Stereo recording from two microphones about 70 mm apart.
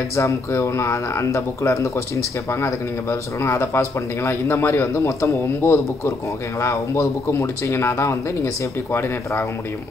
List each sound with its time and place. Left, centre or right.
0.1 s speech: left